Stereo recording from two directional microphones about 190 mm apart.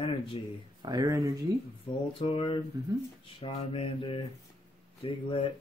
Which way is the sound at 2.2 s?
25° left (ahead or behind).